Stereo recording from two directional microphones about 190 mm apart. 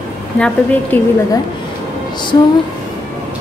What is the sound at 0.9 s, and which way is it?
Speech, 10° left (ahead or behind).